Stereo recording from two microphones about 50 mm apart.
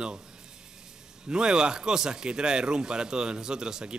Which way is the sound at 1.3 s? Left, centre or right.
Centre.